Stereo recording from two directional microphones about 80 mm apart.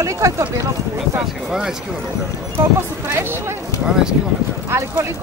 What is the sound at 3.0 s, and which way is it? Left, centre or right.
Music, right.